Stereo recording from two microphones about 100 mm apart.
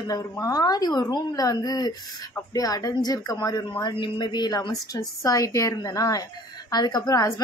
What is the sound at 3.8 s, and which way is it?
A woman's voice, 50° left (ahead or behind).